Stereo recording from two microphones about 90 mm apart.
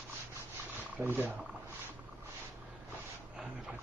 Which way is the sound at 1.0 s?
20° right (ahead or behind).